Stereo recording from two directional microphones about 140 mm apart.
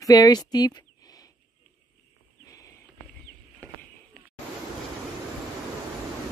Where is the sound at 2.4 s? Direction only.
25° left (ahead or behind).